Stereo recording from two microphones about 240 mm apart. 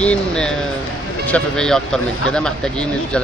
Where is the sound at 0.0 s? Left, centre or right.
Centre.